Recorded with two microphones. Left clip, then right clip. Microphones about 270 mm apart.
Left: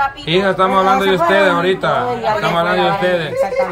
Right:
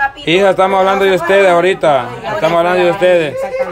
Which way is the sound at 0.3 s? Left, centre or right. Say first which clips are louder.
Right 4 dB; centre.